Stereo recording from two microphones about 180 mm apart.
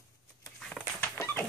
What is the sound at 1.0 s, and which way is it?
Dog, 10° left (ahead or behind).